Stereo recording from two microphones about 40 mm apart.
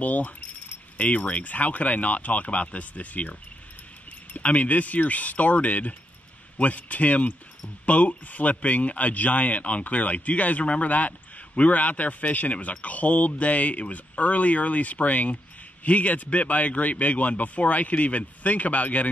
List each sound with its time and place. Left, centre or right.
0.0 s speech: left